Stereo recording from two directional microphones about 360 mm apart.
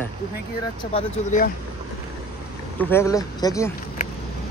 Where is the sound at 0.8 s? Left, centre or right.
Centre.